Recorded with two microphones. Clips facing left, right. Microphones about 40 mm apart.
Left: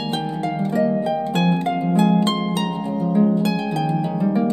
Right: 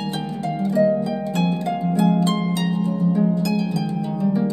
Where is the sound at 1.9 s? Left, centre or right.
Left.